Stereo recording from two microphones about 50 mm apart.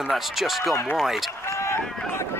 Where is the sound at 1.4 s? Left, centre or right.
Left.